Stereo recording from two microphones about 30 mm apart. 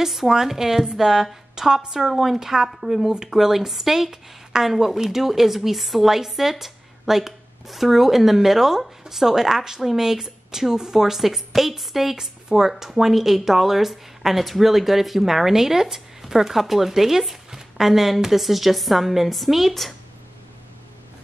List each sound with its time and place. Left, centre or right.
0.3 s speech: centre
1.5 s a sound: right
1.9 s a woman's voice: centre